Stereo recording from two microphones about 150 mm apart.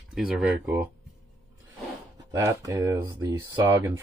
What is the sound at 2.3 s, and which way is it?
Speech, 20° right (ahead or behind).